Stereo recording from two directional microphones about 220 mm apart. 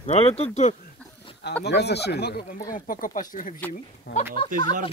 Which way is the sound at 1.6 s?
50° left (ahead or behind).